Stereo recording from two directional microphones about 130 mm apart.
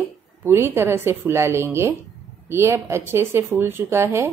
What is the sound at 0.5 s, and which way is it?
Speech, 20° right (ahead or behind).